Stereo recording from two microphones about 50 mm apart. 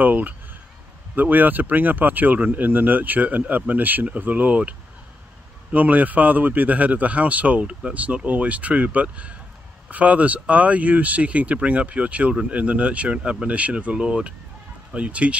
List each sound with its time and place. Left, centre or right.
0.0 s speech: right